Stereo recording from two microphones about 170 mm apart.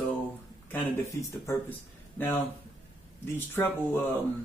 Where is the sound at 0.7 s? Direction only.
15° left (ahead or behind).